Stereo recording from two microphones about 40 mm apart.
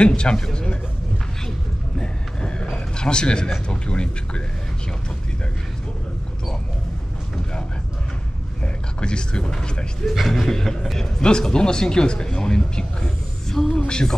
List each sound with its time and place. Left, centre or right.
0.0 s speech: left
2.0 s a sound: left
3.8 s speech: left
9.0 s speech: left
10.0 s speech: centre
10.4 s speech: centre